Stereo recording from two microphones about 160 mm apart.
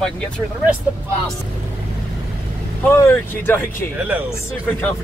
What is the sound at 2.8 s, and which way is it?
Speech, 10° left (ahead or behind).